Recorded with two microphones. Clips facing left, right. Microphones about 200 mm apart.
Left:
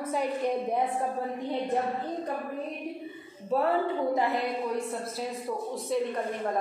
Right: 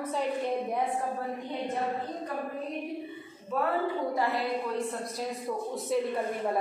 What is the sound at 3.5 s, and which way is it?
Speech, 35° left (ahead or behind).